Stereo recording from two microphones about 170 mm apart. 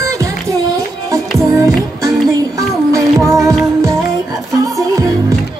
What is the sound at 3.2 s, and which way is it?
Music, 20° right (ahead or behind).